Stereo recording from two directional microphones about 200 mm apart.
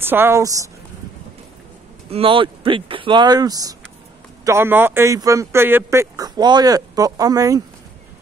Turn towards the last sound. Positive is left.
turn(degrees=-15)  # may be behind; listen again after turning